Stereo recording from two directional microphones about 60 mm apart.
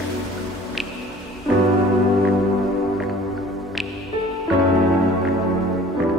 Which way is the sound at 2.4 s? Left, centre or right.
Centre.